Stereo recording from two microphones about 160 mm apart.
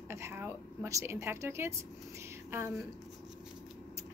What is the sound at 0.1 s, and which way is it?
A woman's voice, 15° right (ahead or behind).